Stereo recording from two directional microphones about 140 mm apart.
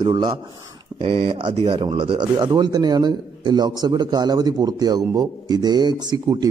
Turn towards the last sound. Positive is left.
turn(degrees=-30)  # may be behind; listen again after turning